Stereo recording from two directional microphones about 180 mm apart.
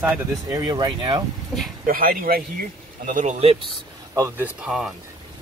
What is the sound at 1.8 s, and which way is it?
Speech, 50° right (ahead or behind).